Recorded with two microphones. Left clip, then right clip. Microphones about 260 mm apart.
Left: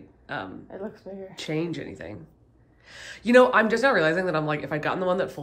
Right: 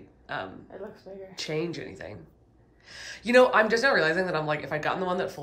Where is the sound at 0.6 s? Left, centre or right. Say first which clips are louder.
Left 4 dB; left.